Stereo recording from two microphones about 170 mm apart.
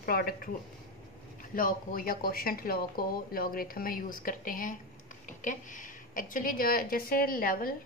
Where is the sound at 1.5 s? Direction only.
55° left (ahead or behind).